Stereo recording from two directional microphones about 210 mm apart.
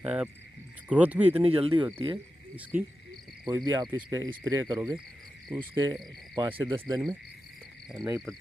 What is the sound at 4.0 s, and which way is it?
Speech, 15° right (ahead or behind).